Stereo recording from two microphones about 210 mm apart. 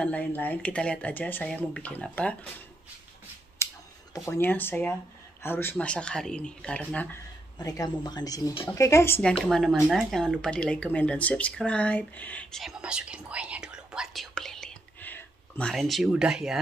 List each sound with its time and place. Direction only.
0.0 s speech: 5° left (ahead or behind)
3.6 s scissors: 15° left (ahead or behind)
4.1 s speech: 10° left (ahead or behind)
7.5 s speech: 15° left (ahead or behind); by 16.5 s 5° right (ahead or behind)